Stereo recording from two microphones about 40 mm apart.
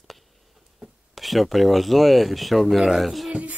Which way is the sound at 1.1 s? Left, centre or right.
Centre.